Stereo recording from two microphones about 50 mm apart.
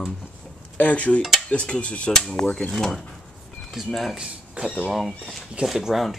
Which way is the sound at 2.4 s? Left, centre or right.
Left.